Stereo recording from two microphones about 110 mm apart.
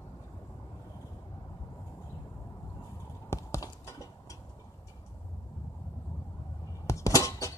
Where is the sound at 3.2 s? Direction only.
30° left (ahead or behind).